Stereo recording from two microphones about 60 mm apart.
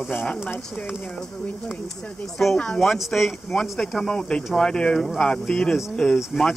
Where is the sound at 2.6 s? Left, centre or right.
Centre.